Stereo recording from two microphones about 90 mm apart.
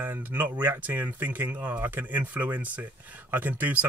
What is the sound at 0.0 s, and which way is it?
Speech, 25° right (ahead or behind).